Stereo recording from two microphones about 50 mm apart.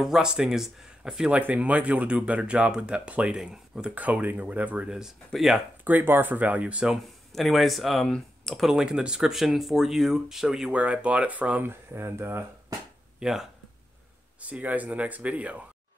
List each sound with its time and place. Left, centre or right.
0.0 s speech: centre
1.4 s speech: right
3.9 s speech: right
4.8 s speech: centre
6.0 s speech: right
6.3 s speech: right
7.0 s speech: centre
8.6 s speech: centre
10.7 s speech: right
11.6 s speech: right
13.2 s speech: centre
14.4 s speech: right